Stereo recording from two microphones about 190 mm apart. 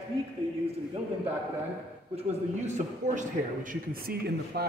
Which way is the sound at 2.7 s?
40° right (ahead or behind).